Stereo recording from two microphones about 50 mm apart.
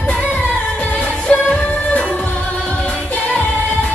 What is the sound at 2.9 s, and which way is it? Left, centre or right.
Music of asia, left.